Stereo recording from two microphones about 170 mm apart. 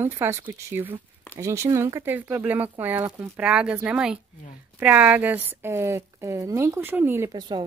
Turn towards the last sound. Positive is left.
turn(degrees=-25)  # may be behind; listen again after turning